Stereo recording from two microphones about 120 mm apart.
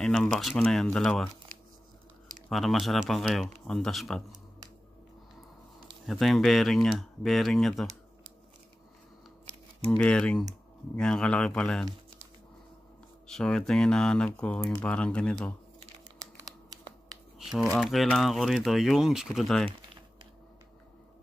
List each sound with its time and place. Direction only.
0.0 s speech: 5° left (ahead or behind)
2.5 s speech: centre (ahead or behind)
6.0 s speech: centre (ahead or behind)
9.8 s speech: 10° left (ahead or behind)
13.3 s speech: 5° left (ahead or behind)
16.3 s scissors: 30° right (ahead or behind)
17.7 s speech: centre (ahead or behind)